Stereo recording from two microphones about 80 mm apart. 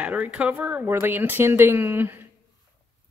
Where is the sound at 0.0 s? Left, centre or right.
Centre.